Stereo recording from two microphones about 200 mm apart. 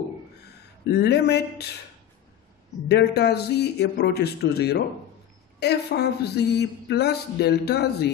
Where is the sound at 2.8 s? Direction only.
55° left (ahead or behind).